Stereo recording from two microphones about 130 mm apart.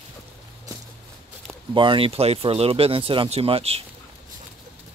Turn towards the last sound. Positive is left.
turn(degrees=-50)  # may be behind; listen again after turning